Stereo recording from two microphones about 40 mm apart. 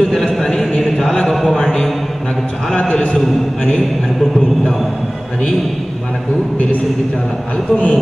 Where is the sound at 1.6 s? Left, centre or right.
Left.